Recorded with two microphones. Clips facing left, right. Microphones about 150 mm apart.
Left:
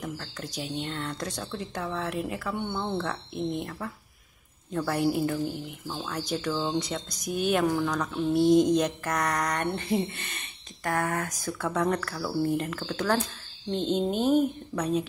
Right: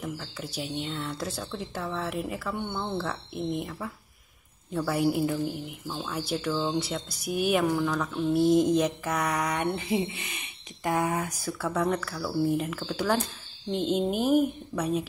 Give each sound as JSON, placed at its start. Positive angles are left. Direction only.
{"t": 0.0, "sound": "speech", "side_deg": -5}
{"t": 6.5, "sound": "speech", "side_deg": 10}
{"t": 6.8, "sound": "speech", "side_deg": -5}